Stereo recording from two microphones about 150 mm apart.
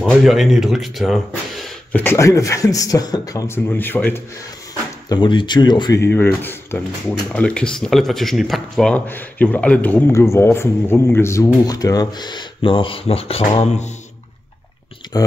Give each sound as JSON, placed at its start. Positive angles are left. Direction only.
{"t": 0.0, "sound": "speech", "side_deg": 0}
{"t": 1.9, "sound": "speech", "side_deg": 15}
{"t": 5.1, "sound": "speech", "side_deg": 30}
{"t": 15.1, "sound": "speech", "side_deg": 25}